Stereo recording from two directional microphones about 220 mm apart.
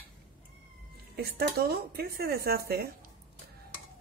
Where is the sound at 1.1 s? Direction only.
45° right (ahead or behind).